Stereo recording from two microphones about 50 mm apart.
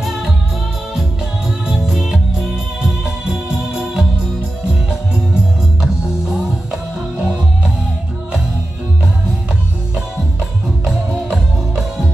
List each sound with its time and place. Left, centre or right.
0.0 s music: centre
2.0 s music: centre; by 7.7 s right
10.9 s music: centre